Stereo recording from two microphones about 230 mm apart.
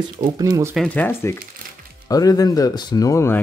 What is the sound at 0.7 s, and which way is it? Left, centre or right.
Speech, centre.